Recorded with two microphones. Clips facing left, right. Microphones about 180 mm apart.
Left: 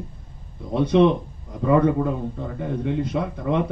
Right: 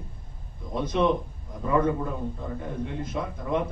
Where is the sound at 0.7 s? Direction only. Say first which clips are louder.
Left 9 dB; 65° left (ahead or behind).